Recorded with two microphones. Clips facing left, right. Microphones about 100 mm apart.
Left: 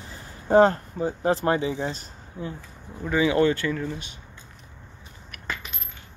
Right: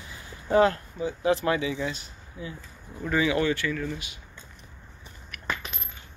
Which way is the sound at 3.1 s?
20° left (ahead or behind).